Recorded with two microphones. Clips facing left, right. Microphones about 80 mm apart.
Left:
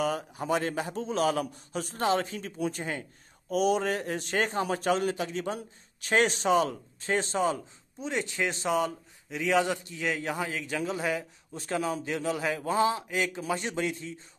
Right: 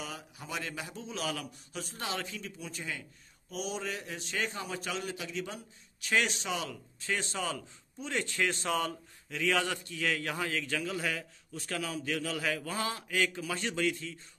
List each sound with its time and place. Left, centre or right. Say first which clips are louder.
0.0 s a man's voice: left 13 dB; left